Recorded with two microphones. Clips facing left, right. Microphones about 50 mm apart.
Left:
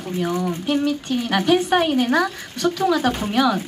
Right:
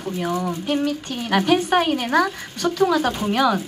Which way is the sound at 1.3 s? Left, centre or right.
Right.